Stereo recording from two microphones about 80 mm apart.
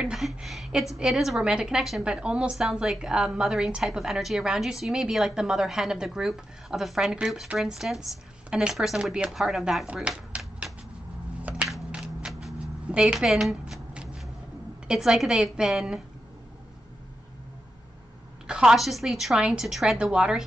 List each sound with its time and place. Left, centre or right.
0.0 s a woman's voice: centre
2.0 s a woman's voice: centre
9.9 s a sound: centre
12.3 s a sound: centre
12.5 s shuffling cards: centre
14.9 s a woman's voice: centre
18.5 s a woman's voice: centre
20.0 s a woman's voice: centre